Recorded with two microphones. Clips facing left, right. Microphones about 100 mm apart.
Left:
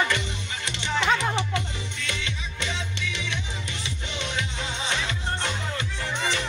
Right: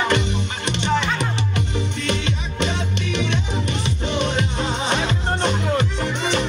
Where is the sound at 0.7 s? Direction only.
60° right (ahead or behind).